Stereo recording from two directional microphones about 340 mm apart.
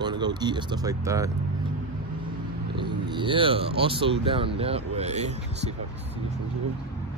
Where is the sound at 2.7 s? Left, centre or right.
Centre.